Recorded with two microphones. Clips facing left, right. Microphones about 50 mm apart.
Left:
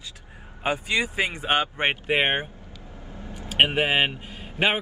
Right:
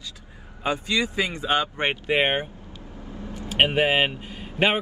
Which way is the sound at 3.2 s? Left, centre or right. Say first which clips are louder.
Right 3 dB; left.